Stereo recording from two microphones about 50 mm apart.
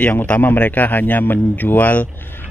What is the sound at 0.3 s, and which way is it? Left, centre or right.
A man's voice, left.